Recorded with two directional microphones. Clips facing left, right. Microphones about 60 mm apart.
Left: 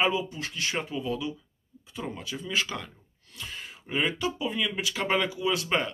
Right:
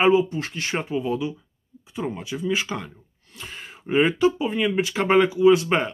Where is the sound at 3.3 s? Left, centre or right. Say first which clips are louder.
Right 2 dB; right.